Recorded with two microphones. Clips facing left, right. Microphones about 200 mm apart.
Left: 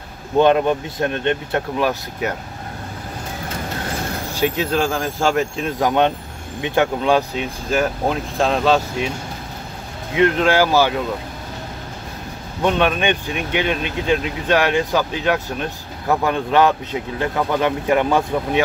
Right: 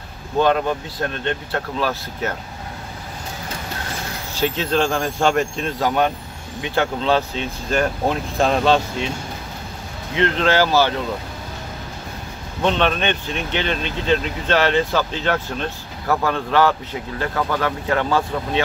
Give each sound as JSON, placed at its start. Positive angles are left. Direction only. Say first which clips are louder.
{"t": 0.4, "sound": "speech", "louder": "left 4 dB", "side_deg": 20}
{"t": 4.4, "sound": "speech", "louder": "even", "side_deg": 10}
{"t": 5.8, "sound": "speech", "louder": "left 3 dB", "side_deg": 20}
{"t": 10.1, "sound": "speech", "louder": "left 2 dB", "side_deg": 10}
{"t": 12.6, "sound": "speech", "louder": "left 2 dB", "side_deg": 10}